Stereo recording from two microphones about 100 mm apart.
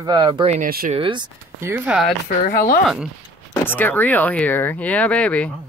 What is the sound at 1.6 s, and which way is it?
Speech, 25° right (ahead or behind).